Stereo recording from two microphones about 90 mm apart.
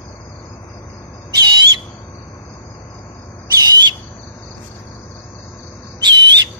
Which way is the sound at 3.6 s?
50° right (ahead or behind).